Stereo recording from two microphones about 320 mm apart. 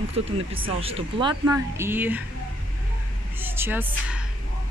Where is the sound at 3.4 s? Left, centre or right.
Centre.